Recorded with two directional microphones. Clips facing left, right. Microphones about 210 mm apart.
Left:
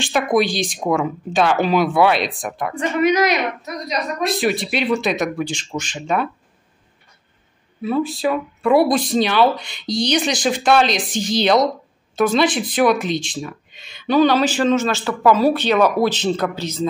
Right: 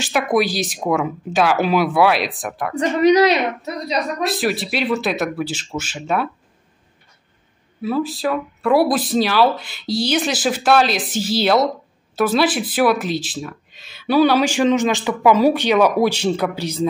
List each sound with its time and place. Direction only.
0.0 s speech: 5° right (ahead or behind)
2.7 s a woman's voice: 35° right (ahead or behind)
4.2 s speech: centre (ahead or behind)
7.8 s speech: centre (ahead or behind)